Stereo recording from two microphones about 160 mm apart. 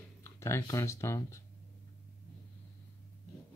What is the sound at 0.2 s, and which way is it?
Speech, 15° left (ahead or behind).